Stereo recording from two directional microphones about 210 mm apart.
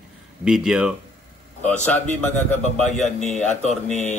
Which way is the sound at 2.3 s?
35° left (ahead or behind).